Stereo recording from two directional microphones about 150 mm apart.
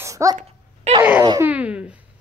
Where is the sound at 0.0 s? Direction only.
20° right (ahead or behind).